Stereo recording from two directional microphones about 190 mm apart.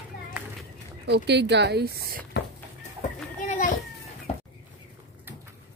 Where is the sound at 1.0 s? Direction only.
65° right (ahead or behind).